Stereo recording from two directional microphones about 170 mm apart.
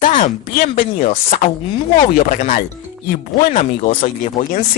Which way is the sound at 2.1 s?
50° left (ahead or behind).